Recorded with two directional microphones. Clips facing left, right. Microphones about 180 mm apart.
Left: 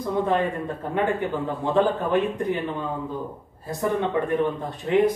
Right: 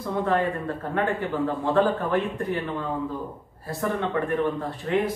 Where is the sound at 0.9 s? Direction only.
15° left (ahead or behind).